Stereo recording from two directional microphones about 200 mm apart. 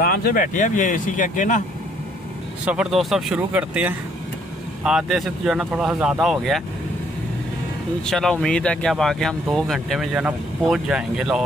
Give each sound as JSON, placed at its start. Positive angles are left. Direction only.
{"t": 0.0, "sound": "speech", "side_deg": 45}
{"t": 2.6, "sound": "speech", "side_deg": -5}
{"t": 8.0, "sound": "speech", "side_deg": 0}